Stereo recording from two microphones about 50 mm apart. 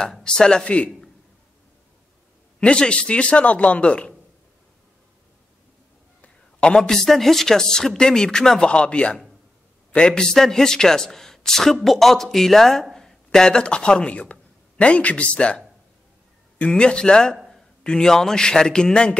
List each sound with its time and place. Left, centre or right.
0.0 s speech: centre
0.7 s a man's voice: left
2.6 s a man's voice: left
6.2 s a sound: left
6.9 s a man's voice: centre